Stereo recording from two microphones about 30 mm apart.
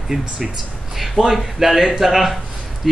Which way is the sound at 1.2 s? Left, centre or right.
Right.